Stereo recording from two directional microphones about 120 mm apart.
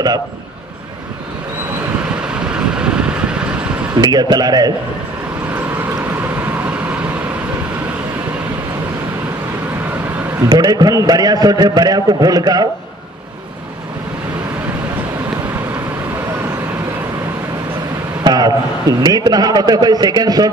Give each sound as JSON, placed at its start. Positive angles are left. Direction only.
{"t": 2.5, "sound": "vehicle", "side_deg": -5}
{"t": 3.9, "sound": "a man's voice", "side_deg": -35}
{"t": 10.5, "sound": "a man's voice", "side_deg": -35}
{"t": 18.2, "sound": "a man's voice", "side_deg": -35}